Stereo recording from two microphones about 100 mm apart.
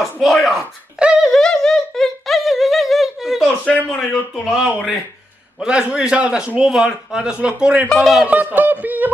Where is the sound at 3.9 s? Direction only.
Centre (ahead or behind).